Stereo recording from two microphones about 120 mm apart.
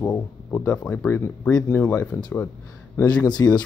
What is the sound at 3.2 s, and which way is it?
Speech, 35° left (ahead or behind).